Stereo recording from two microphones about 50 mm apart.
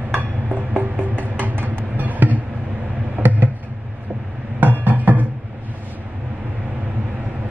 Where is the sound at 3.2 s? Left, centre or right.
Right.